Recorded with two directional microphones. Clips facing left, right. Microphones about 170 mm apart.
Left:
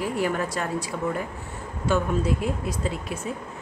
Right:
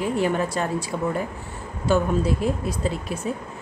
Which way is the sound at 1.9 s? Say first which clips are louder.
Right 3 dB; 35° right (ahead or behind).